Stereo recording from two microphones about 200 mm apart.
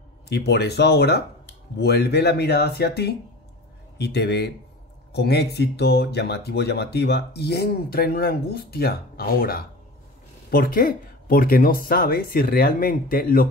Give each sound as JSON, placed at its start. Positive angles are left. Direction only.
{"t": 0.5, "sound": "speech", "side_deg": 55}